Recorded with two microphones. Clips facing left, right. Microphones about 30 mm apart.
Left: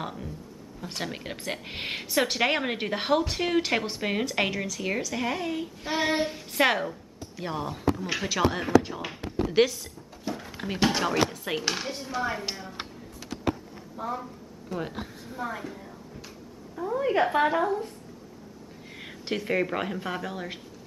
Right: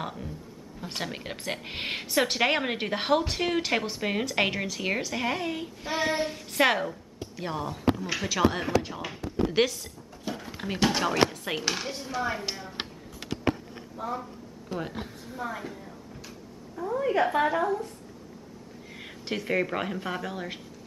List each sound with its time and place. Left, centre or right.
0.0 s a woman's voice: centre
4.6 s speech: right
5.9 s a woman's voice: centre
13.9 s speech: centre
14.7 s a woman's voice: right
15.2 s a woman's voice: centre
18.9 s speech: centre